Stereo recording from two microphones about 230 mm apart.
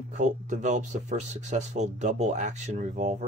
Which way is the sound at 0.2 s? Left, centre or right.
Right.